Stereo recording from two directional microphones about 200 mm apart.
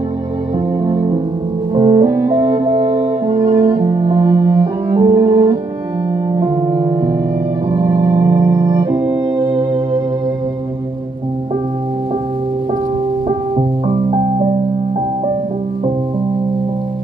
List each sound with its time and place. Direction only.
0.8 s music: 25° right (ahead or behind)
13.6 s music: 30° right (ahead or behind)